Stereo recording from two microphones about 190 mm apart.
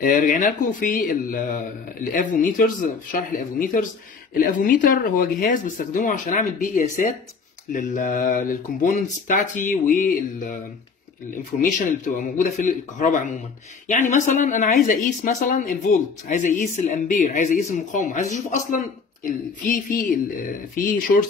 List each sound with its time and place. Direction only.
0.0 s speech: 45° left (ahead or behind)
11.6 s speech: 45° left (ahead or behind)